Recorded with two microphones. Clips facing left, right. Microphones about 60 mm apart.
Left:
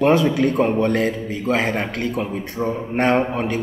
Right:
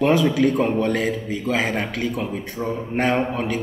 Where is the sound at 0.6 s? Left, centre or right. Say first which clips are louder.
Left 2 dB; centre.